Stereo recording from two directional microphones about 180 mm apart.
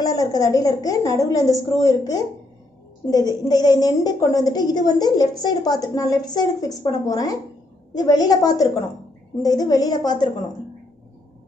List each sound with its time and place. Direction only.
0.0 s a woman's voice: 20° left (ahead or behind)